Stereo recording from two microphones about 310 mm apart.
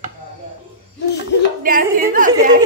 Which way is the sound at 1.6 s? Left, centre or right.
Right.